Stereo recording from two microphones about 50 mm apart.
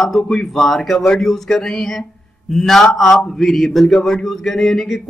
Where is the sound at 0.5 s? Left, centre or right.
Centre.